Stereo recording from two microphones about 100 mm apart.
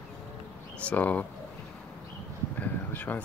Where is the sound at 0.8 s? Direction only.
15° left (ahead or behind).